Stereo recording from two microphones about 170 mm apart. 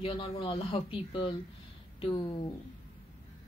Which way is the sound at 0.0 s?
30° left (ahead or behind).